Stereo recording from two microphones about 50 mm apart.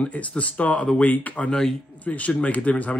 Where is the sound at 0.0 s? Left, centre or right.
Left.